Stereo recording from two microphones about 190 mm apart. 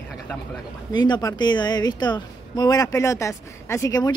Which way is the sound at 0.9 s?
20° left (ahead or behind).